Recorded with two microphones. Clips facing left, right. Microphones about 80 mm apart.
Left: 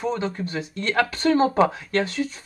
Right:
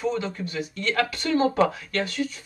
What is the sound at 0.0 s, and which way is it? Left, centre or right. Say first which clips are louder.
Speech: left 1 dB; left.